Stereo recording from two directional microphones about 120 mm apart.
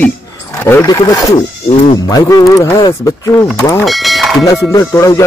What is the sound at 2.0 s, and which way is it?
Speech, 30° left (ahead or behind).